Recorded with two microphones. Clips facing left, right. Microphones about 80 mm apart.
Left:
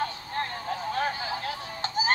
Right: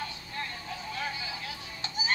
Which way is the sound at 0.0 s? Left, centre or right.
Left.